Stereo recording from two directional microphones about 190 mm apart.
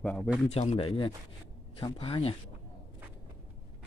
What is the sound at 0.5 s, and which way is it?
Speech, 35° left (ahead or behind).